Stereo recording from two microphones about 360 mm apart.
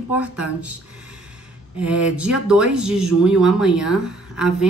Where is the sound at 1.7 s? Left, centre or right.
Centre.